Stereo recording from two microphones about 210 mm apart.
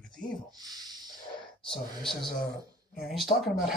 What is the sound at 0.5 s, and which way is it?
Speech, 20° right (ahead or behind).